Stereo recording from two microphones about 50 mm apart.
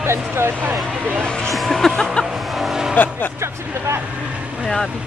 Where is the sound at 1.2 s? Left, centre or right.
Centre.